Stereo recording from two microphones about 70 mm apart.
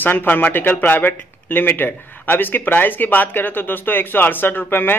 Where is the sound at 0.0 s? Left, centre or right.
Left.